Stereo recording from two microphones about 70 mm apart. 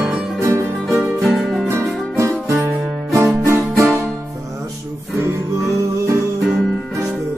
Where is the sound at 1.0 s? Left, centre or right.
Centre.